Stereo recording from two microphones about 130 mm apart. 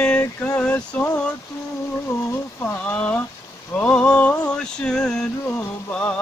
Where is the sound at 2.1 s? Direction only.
20° left (ahead or behind).